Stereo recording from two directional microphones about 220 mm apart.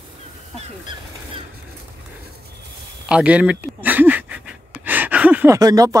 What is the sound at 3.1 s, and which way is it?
Speech, 5° right (ahead or behind).